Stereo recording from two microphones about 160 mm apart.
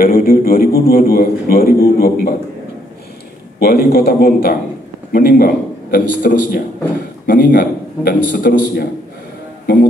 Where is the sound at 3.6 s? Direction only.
80° left.